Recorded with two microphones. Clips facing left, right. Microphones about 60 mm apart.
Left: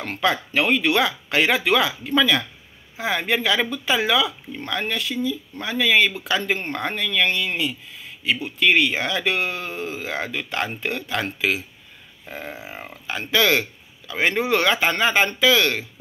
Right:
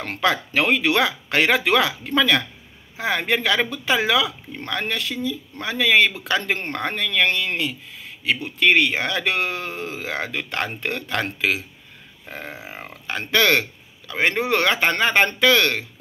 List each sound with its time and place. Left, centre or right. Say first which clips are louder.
0.0 s speech: right 1 dB; right
12.4 s grunt: left 1 dB; centre
13.0 s speech: right 1 dB; right